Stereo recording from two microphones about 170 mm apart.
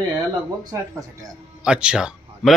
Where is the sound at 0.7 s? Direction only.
15° right (ahead or behind).